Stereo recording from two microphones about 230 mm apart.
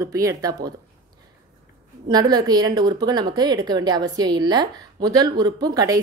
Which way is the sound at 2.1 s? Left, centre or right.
Centre.